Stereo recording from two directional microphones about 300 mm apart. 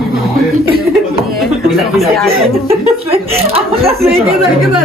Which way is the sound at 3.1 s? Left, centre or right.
Centre.